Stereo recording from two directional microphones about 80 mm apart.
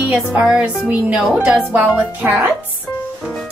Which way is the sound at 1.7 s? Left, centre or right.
Right.